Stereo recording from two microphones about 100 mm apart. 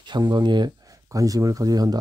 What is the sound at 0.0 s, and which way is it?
Speech, 45° right (ahead or behind).